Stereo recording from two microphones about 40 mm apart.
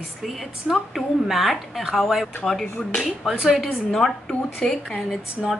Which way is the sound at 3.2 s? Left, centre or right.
Centre.